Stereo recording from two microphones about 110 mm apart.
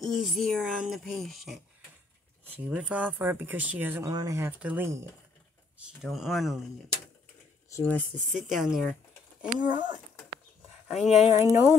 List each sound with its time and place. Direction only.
0.0 s speech: centre (ahead or behind)
2.4 s speech: 15° right (ahead or behind)
4.0 s speech: 30° right (ahead or behind)
4.4 s speech: 15° right (ahead or behind)
5.9 s speech: centre (ahead or behind)
7.7 s speech: 20° left (ahead or behind)
8.3 s speech: centre (ahead or behind)
9.6 s speech: 40° right (ahead or behind)
11.1 s speech: 80° left
11.3 s speech: 30° right (ahead or behind)